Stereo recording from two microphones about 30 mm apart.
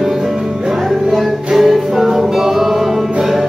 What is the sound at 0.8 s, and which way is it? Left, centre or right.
Music, centre.